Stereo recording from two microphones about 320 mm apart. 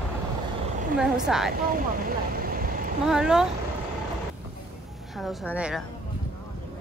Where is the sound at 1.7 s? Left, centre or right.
Right.